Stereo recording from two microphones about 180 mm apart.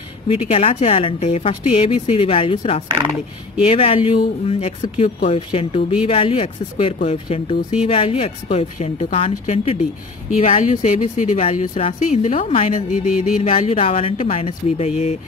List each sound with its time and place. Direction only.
0.3 s speech: 35° left (ahead or behind)
12.9 s music: 5° right (ahead or behind)
13.4 s speech: 35° left (ahead or behind)